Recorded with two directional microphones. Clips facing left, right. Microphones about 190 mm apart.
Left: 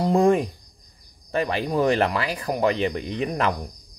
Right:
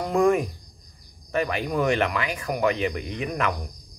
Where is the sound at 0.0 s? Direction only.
30° left (ahead or behind).